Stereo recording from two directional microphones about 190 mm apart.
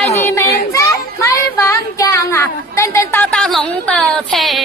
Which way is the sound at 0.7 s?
15° left (ahead or behind).